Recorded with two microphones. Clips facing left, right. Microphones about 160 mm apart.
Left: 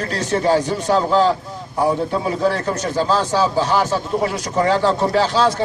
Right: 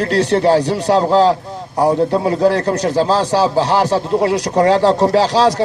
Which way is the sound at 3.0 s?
30° right (ahead or behind).